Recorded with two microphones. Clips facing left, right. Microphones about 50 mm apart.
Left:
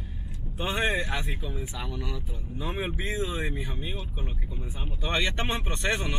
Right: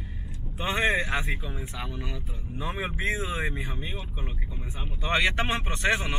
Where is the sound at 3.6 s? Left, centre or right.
Right.